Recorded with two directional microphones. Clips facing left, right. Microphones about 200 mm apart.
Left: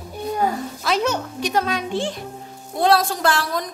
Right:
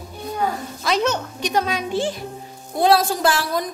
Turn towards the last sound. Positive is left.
turn(degrees=-5)  # may be behind; listen again after turning